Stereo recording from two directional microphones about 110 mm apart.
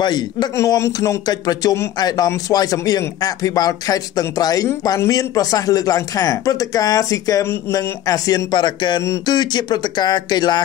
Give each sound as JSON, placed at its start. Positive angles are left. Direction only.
{"t": 0.0, "sound": "speech", "side_deg": 40}
{"t": 0.6, "sound": "speech", "side_deg": 25}